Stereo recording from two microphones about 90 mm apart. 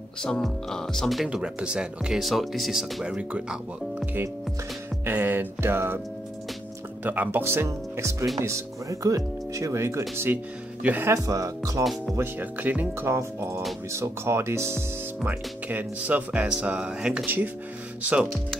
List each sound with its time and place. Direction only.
0.2 s speech: 5° left (ahead or behind); by 5.9 s 25° right (ahead or behind)
7.0 s speech: 20° right (ahead or behind)
11.1 s speech: 40° right (ahead or behind)
11.8 s speech: centre (ahead or behind)
12.2 s speech: 20° right (ahead or behind)
13.9 s speech: 30° right (ahead or behind)
15.2 s music: 20° right (ahead or behind)